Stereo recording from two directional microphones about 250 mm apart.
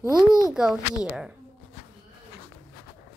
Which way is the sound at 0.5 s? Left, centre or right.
Centre.